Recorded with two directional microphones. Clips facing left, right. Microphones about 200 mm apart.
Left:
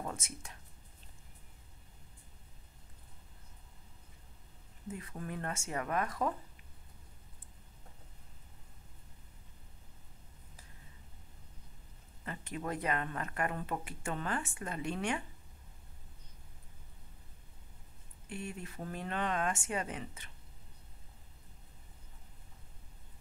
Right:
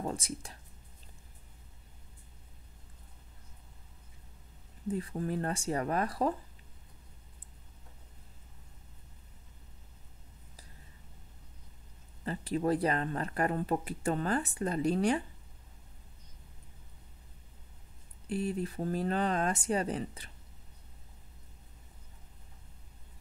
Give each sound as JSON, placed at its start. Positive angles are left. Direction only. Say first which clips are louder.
{"t": 0.0, "sound": "speech", "louder": "right 6 dB", "side_deg": -35}
{"t": 4.9, "sound": "speech", "louder": "right 8 dB", "side_deg": -30}
{"t": 12.3, "sound": "speech", "louder": "right 9 dB", "side_deg": -35}
{"t": 18.3, "sound": "speech", "louder": "right 10 dB", "side_deg": -35}